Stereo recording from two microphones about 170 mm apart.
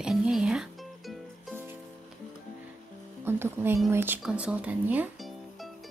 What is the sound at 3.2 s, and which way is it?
Speech, 15° right (ahead or behind).